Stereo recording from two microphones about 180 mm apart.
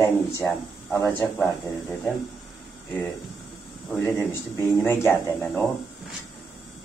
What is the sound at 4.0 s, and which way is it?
Speech, 15° left (ahead or behind).